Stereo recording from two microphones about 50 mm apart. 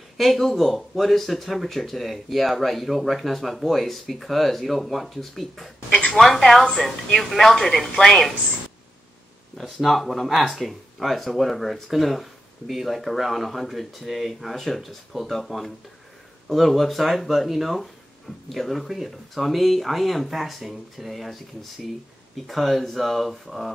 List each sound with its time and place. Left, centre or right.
0.2 s speech: centre
5.9 s a sound: left
6.1 s speech: centre
9.8 s speech: centre